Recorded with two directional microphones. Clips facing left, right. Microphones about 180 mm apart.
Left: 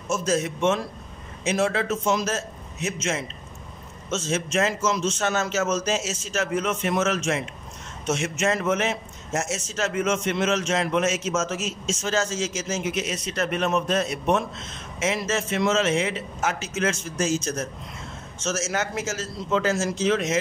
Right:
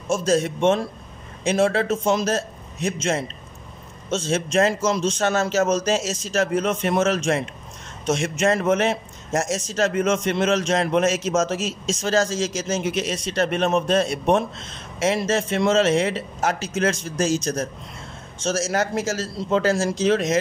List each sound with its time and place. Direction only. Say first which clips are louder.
0.1 s a man's voice: right 4 dB; 30° right (ahead or behind)